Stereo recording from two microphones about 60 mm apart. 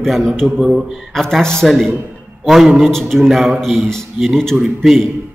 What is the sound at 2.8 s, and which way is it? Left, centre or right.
Speech, centre.